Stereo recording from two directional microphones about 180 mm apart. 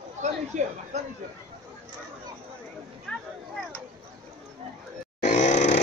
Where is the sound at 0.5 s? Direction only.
40° right (ahead or behind).